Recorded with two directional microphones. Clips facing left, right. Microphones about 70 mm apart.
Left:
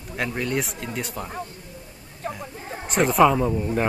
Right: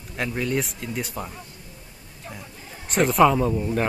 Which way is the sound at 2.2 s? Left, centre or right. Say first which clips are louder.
Left 8 dB; left.